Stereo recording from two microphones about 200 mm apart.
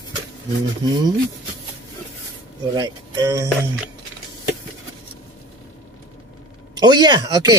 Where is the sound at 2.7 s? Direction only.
20° right (ahead or behind).